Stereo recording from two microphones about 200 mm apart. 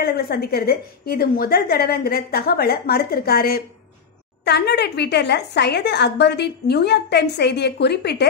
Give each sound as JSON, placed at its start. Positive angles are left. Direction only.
{"t": 0.0, "sound": "a woman's voice", "side_deg": 50}